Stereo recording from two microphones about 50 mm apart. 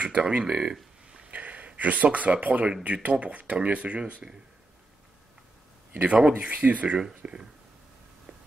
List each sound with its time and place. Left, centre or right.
0.0 s speech: right
0.5 s a sound: centre
1.3 s speech: right
6.0 s speech: centre
6.5 s speech: right